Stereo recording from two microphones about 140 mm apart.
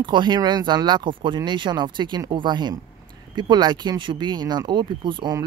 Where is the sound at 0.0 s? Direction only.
35° right (ahead or behind).